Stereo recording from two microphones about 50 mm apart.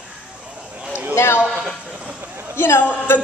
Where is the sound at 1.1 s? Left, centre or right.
Left.